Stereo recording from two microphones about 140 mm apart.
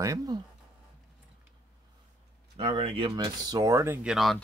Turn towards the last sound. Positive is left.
turn(degrees=0)  # may be behind; listen again after turning